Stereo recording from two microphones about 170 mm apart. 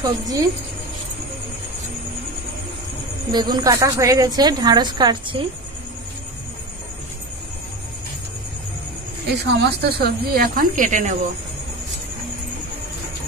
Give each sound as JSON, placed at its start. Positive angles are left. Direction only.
{"t": 0.0, "sound": "a woman's voice", "side_deg": -20}
{"t": 3.3, "sound": "a woman's voice", "side_deg": -25}
{"t": 9.5, "sound": "speech", "side_deg": -75}